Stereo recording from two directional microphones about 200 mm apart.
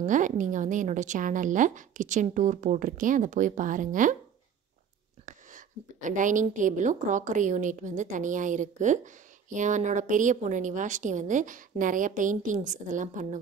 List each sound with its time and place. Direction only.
0.0 s a woman's voice: 40° right (ahead or behind)
5.2 s a woman's voice: 40° right (ahead or behind)